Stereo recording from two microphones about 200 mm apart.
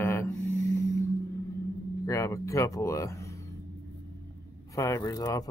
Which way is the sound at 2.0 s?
15° left (ahead or behind).